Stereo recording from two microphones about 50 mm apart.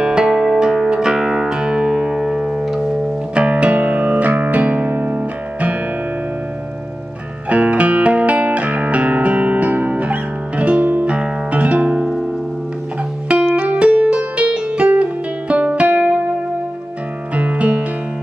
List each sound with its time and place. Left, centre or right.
0.0 s music: centre
3.4 s music: right
7.4 s music: right
13.5 s music: right
17.3 s music: right